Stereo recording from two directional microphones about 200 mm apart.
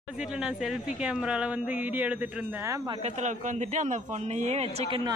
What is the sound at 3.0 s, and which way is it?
A woman's voice, 35° right (ahead or behind).